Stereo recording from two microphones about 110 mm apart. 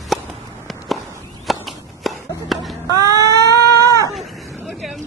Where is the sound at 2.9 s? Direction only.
35° right (ahead or behind).